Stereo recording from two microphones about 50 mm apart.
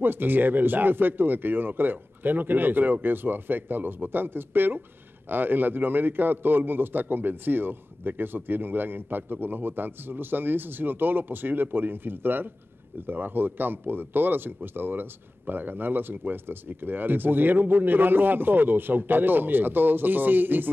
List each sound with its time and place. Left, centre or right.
0.0 s a man's voice: right